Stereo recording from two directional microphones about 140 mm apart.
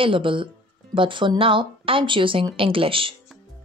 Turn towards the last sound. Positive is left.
turn(degrees=-40)  # may be behind; listen again after turning